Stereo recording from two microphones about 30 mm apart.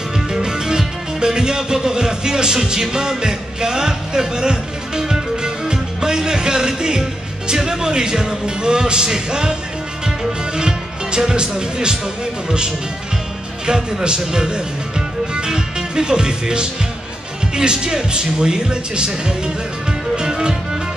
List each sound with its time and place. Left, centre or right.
0.3 s music: right
7.4 s speech: centre
10.0 s music: right
12.4 s speech: right
20.2 s music: right